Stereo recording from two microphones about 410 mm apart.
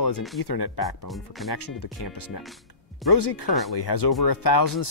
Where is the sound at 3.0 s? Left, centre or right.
Left.